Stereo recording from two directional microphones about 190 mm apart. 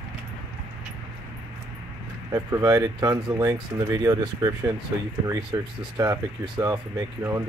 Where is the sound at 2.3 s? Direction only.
20° right (ahead or behind).